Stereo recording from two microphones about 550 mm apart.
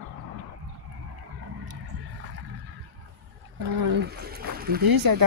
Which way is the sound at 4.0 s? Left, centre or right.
Centre.